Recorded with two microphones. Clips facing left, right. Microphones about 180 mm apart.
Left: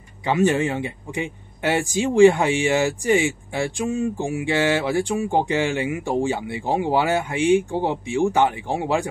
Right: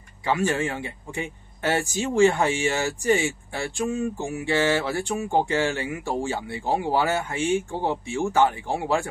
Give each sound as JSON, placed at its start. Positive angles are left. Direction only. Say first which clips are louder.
{"t": 0.3, "sound": "speech", "louder": "left 5 dB", "side_deg": 20}